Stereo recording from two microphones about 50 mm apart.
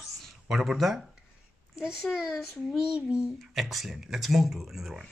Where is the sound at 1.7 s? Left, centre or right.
Centre.